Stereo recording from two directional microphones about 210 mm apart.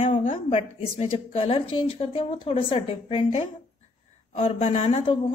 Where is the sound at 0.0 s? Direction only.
30° left (ahead or behind).